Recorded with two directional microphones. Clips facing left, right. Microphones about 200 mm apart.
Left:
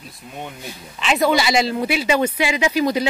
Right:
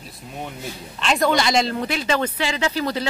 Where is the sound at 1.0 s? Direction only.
5° left (ahead or behind).